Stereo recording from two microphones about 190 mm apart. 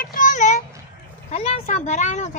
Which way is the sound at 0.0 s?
45° left (ahead or behind).